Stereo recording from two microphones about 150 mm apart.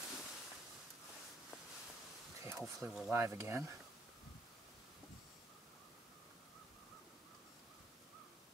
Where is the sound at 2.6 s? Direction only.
Centre (ahead or behind).